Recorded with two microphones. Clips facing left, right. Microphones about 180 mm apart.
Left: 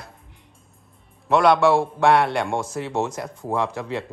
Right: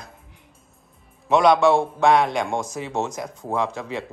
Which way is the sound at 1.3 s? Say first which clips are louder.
Even; 20° right (ahead or behind).